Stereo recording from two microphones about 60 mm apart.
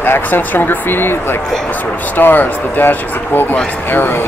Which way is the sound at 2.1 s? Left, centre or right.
Left.